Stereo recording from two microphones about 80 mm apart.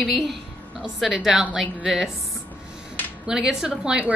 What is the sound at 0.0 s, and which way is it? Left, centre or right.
A woman's voice, centre.